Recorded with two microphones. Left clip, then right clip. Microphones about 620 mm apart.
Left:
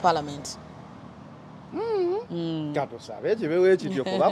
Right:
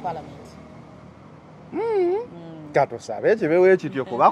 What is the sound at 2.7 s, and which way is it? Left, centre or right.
Speech, centre.